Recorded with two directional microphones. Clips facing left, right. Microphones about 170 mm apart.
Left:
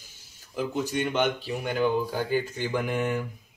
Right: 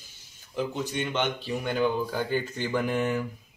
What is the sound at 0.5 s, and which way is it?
Speech, 10° left (ahead or behind).